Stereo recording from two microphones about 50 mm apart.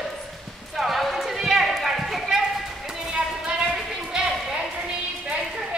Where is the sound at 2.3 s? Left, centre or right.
Centre.